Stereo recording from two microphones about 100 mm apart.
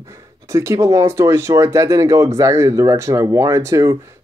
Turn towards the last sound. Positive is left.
turn(degrees=-30)  # may be behind; listen again after turning